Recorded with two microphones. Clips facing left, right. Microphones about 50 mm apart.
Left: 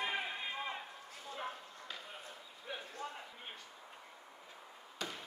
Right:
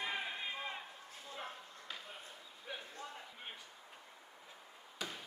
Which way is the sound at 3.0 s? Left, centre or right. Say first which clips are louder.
Left 4 dB; left.